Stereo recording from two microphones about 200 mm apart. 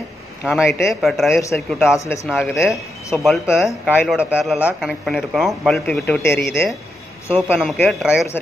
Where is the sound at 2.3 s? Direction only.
Centre (ahead or behind).